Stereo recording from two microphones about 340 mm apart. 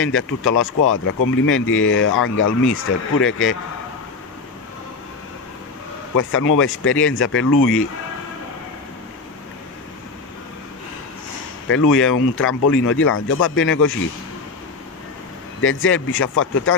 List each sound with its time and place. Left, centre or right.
0.0 s speech: left
6.1 s speech: left
12.1 s speech: left
15.6 s speech: left